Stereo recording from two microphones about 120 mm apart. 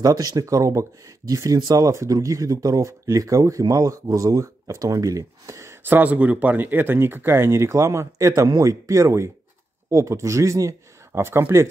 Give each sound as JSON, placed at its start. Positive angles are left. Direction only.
{"t": 0.0, "sound": "speech", "side_deg": -30}